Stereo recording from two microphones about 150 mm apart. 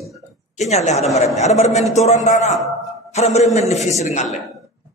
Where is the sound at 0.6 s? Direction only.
50° left (ahead or behind).